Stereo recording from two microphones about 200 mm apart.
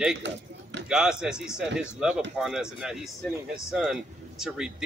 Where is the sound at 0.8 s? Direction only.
5° right (ahead or behind).